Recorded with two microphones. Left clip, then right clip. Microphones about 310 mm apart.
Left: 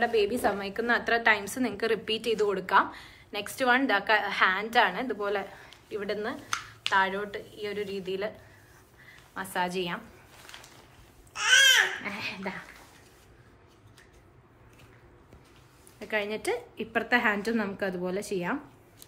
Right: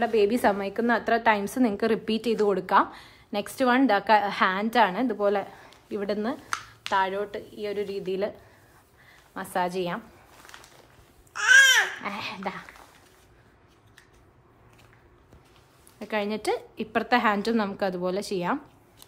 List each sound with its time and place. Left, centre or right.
0.0 s a woman's voice: right
12.0 s a woman's voice: right
16.0 s a woman's voice: right